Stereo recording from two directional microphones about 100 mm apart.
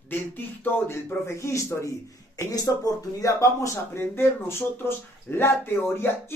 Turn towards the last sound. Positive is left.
turn(degrees=25)  # may be behind; listen again after turning